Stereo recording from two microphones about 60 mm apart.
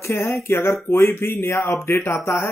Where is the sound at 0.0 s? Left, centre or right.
Left.